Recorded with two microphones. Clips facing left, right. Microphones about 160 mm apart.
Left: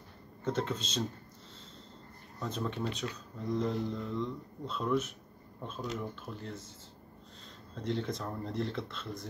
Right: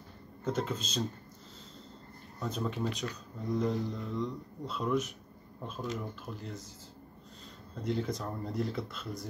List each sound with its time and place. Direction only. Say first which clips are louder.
0.4 s speech: even; centre (ahead or behind)
2.4 s speech: right 1 dB; 5° right (ahead or behind)
7.7 s speech: right 1 dB; 5° right (ahead or behind)